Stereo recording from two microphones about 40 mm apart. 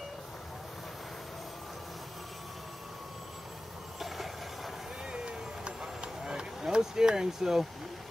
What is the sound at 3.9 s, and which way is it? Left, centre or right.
Vehicle, centre.